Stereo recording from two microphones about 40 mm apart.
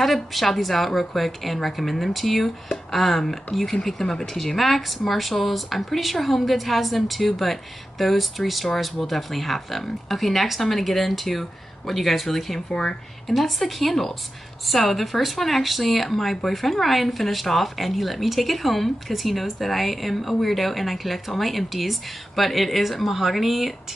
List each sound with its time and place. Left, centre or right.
0.0 s a woman's voice: centre
12.5 s speech: centre
13.3 s a woman's voice: centre